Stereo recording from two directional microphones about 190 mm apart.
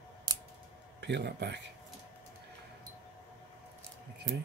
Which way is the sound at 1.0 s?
65° right (ahead or behind).